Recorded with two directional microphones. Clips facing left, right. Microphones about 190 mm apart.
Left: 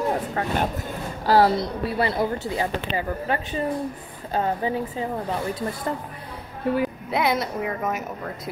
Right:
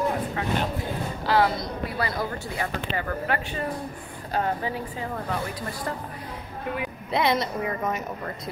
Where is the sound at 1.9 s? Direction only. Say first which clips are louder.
Left 7 dB; 25° left (ahead or behind).